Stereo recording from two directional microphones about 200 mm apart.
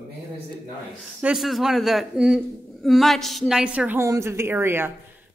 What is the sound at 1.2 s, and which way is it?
A man's voice, 5° right (ahead or behind).